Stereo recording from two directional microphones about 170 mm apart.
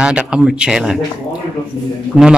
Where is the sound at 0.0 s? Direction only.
5° right (ahead or behind).